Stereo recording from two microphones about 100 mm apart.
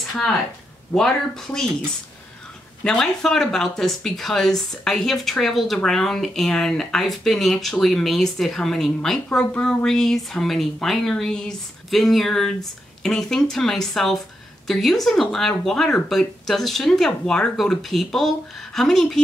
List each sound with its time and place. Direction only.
0.9 s speech: 5° left (ahead or behind)
2.8 s speech: 10° left (ahead or behind)